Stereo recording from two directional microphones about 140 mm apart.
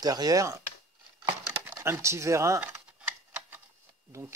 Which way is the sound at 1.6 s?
15° right (ahead or behind).